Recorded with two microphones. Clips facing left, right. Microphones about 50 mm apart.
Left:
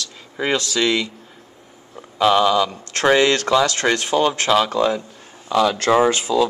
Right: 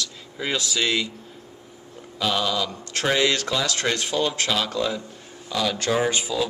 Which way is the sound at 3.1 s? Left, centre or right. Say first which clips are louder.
Left 7 dB; left.